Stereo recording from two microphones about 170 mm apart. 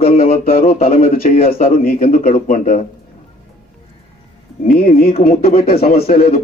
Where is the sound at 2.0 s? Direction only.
50° left (ahead or behind).